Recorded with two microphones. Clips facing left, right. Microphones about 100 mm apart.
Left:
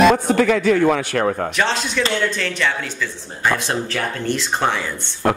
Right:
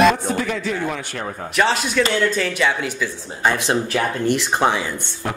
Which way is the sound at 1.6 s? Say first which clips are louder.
Right 6 dB; 5° right (ahead or behind).